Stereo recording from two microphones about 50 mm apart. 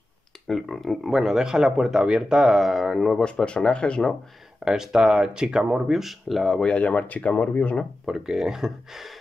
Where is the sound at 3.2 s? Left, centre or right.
Centre.